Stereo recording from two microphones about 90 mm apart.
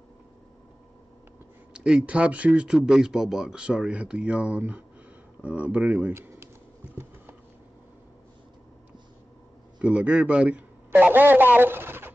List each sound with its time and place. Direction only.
1.7 s speech: 10° right (ahead or behind)
6.1 s a sound: 30° right (ahead or behind)
9.8 s a man's voice: 15° right (ahead or behind)